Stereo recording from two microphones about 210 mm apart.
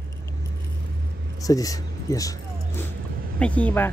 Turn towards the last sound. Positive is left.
turn(degrees=10)  # may be behind; listen again after turning